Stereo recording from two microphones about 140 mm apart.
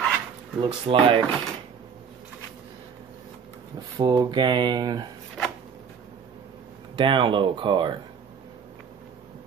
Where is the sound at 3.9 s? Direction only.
30° right (ahead or behind).